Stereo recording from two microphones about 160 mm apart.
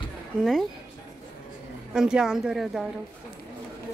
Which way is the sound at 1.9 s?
5° right (ahead or behind).